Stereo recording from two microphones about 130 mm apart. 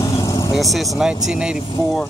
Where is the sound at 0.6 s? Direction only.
Centre (ahead or behind).